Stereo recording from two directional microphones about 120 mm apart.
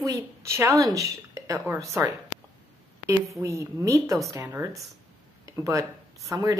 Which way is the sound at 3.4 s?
25° right (ahead or behind).